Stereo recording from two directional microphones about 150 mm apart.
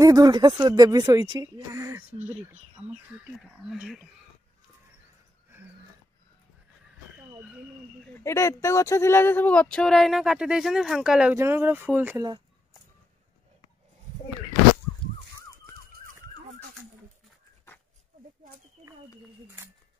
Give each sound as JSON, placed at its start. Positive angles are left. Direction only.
{"t": 0.0, "sound": "speech", "side_deg": -25}
{"t": 8.1, "sound": "speech", "side_deg": 20}
{"t": 19.4, "sound": "speech", "side_deg": -10}